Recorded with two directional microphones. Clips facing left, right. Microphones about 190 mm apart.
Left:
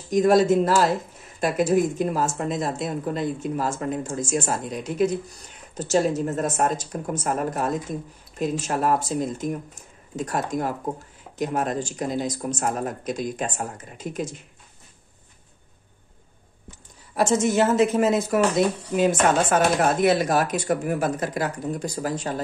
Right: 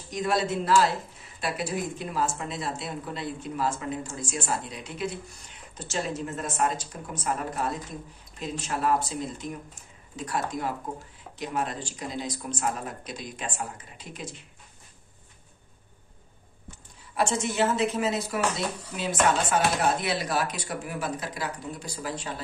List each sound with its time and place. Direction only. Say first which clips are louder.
0.1 s speech: left 10 dB; 45° left (ahead or behind)
17.1 s speech: left 7 dB; 45° left (ahead or behind)